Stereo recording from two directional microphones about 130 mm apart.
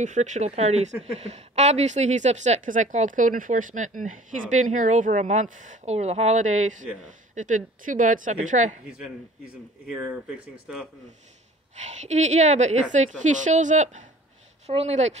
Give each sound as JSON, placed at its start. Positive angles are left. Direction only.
{"t": 0.0, "sound": "a woman's voice", "side_deg": -70}
{"t": 0.6, "sound": "a woman's voice", "side_deg": -55}
{"t": 8.8, "sound": "a man's voice", "side_deg": -5}
{"t": 11.7, "sound": "a woman's voice", "side_deg": -65}
{"t": 14.7, "sound": "a woman's voice", "side_deg": -55}